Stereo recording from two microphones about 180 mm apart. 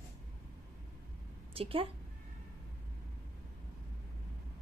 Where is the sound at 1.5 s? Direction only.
30° right (ahead or behind).